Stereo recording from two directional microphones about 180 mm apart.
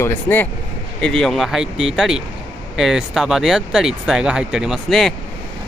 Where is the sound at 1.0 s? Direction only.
Centre (ahead or behind).